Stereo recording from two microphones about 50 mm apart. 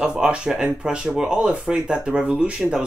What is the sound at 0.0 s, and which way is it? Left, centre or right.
Speech, centre.